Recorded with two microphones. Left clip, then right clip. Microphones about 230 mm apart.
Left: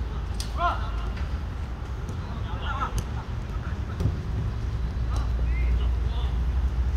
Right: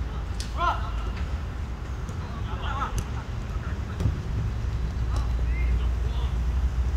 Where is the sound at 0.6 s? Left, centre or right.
Right.